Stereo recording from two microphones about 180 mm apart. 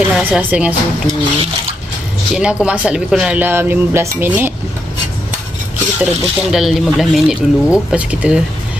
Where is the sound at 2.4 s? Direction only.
5° right (ahead or behind).